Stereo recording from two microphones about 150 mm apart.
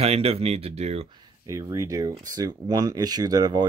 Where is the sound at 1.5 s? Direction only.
20° right (ahead or behind).